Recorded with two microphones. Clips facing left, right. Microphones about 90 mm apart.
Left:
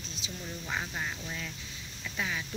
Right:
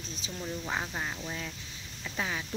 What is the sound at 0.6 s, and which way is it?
Music, 20° right (ahead or behind).